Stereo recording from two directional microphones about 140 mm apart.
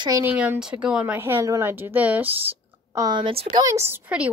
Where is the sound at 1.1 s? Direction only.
20° right (ahead or behind).